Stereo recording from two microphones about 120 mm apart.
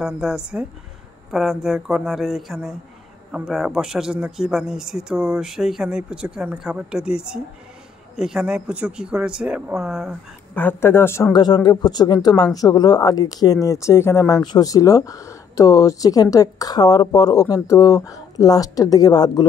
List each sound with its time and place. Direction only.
0.0 s speech: 5° right (ahead or behind)
10.5 s speech: 15° left (ahead or behind)
11.3 s speech: 35° left (ahead or behind)